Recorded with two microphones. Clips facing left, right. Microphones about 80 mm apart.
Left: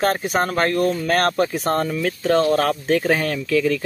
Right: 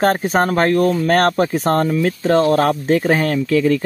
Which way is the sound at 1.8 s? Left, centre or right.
Right.